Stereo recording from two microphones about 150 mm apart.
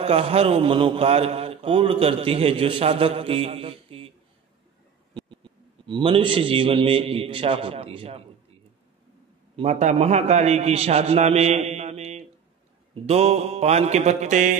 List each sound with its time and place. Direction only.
0.0 s a man's voice: 40° right (ahead or behind)
5.1 s a man's voice: 35° right (ahead or behind)
9.6 s a man's voice: 45° right (ahead or behind)